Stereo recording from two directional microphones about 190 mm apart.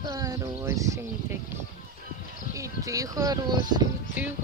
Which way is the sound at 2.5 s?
15° right (ahead or behind).